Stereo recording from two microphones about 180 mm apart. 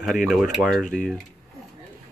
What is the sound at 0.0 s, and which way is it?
Speech, centre (ahead or behind).